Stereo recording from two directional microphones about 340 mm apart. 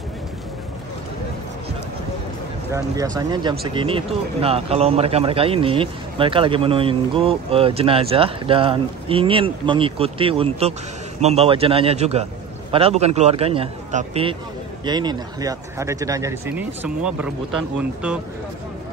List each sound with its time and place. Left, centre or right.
3.2 s speech: centre